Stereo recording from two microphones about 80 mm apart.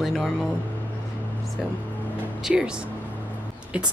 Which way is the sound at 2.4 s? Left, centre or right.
Centre.